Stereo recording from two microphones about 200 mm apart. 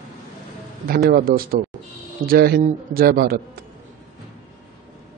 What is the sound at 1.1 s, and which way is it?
A man's voice, 45° right (ahead or behind).